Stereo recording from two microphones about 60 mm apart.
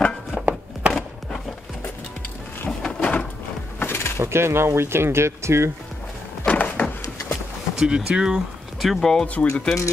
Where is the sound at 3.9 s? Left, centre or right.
Left.